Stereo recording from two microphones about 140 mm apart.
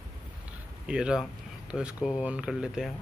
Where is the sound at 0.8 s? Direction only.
5° right (ahead or behind).